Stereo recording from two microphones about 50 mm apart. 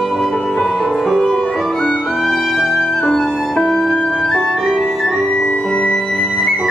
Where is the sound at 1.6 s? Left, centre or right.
Centre.